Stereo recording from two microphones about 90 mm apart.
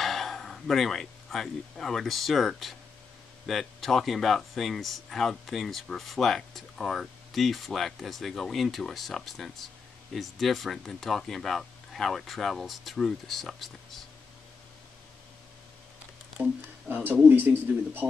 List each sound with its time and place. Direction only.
0.0 s speech: centre (ahead or behind)
16.4 s speech: 25° right (ahead or behind)